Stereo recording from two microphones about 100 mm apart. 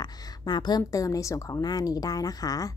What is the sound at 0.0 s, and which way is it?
A woman's voice, 40° left (ahead or behind).